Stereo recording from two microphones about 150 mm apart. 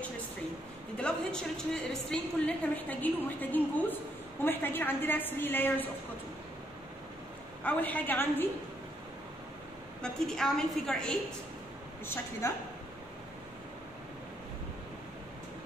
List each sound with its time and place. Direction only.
0.9 s a woman's voice: 5° left (ahead or behind)
7.6 s a woman's voice: 10° left (ahead or behind)
10.0 s a woman's voice: 5° left (ahead or behind)
12.1 s a woman's voice: 20° left (ahead or behind)